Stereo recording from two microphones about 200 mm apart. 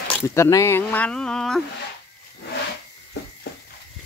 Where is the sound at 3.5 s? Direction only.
50° left (ahead or behind).